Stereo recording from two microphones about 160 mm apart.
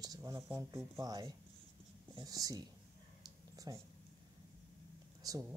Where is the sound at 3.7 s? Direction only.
25° right (ahead or behind).